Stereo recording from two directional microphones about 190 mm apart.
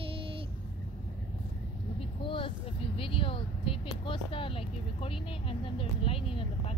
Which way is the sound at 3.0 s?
30° left (ahead or behind).